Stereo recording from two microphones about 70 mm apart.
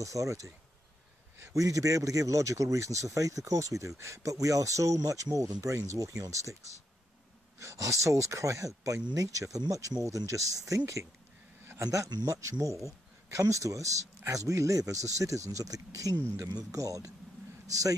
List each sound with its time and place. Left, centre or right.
0.0 s speech: right
1.5 s speech: right
7.5 s speech: right
11.8 s a man's voice: right